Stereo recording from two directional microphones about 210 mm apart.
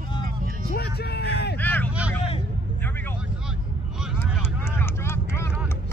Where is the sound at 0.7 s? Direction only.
50° left (ahead or behind).